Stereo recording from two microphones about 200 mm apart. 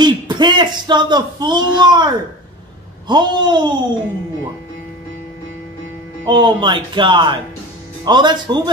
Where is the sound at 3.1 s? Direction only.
20° right (ahead or behind).